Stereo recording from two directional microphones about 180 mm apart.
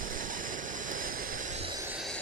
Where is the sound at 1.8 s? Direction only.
5° right (ahead or behind).